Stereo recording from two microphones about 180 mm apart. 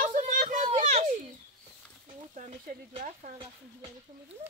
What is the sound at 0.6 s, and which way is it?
Children playing, 40° right (ahead or behind).